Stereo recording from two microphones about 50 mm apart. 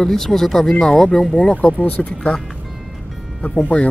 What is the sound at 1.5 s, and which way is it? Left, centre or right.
Speech, left.